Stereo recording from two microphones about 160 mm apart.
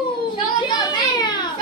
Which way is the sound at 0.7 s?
25° left (ahead or behind).